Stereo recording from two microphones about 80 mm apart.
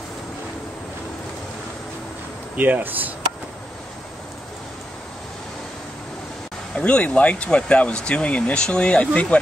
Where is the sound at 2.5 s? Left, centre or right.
Right.